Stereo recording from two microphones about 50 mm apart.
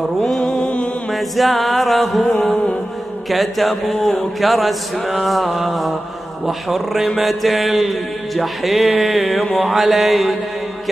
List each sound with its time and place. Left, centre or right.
0.2 s mantra: centre
1.1 s music: centre
2.2 s music: centre
3.3 s music: centre